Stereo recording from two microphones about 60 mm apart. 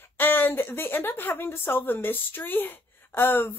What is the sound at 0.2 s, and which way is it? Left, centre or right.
Speech, left.